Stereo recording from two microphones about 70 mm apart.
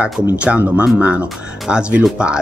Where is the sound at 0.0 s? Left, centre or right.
Centre.